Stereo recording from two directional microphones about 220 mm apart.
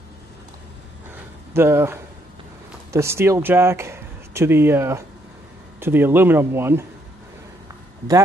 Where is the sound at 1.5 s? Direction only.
10° right (ahead or behind).